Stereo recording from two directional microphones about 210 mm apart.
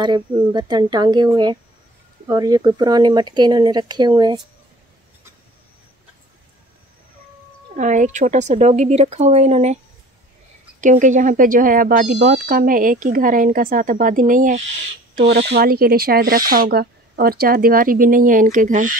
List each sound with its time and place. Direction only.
0.0 s speech: 20° right (ahead or behind)
7.7 s speech: 35° right (ahead or behind)
10.8 s speech: 35° right (ahead or behind)
15.1 s speech: 50° right (ahead or behind)